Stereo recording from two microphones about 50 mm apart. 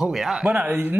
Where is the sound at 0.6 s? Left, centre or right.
Right.